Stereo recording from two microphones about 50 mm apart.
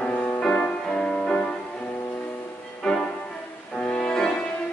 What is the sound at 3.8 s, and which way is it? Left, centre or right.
Music, left.